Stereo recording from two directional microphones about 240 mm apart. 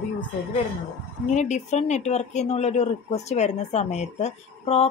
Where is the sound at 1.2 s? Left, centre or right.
Left.